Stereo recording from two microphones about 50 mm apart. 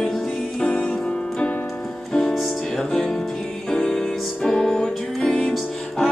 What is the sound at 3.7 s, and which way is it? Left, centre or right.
Music, centre.